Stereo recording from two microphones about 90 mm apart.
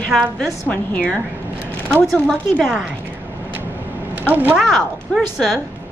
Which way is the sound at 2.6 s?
5° right (ahead or behind).